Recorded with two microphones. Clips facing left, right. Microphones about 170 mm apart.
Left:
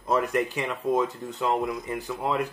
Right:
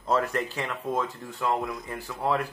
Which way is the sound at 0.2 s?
15° left (ahead or behind).